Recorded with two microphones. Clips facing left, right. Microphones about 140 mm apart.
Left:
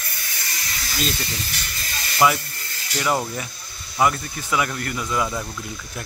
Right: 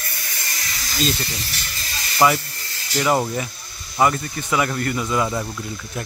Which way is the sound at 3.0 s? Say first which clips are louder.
Right 4 dB; 10° right (ahead or behind).